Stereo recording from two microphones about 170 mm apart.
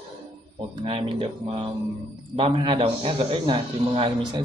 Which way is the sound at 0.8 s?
35° right (ahead or behind).